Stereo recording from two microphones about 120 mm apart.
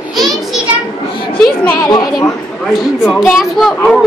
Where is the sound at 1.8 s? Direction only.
30° left (ahead or behind).